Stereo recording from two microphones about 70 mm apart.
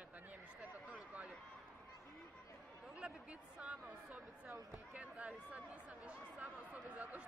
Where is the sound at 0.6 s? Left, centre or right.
Right.